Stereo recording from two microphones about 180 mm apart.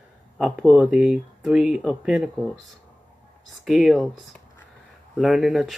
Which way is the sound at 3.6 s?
Centre (ahead or behind).